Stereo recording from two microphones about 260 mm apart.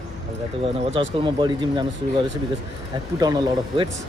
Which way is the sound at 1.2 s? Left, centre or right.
Centre.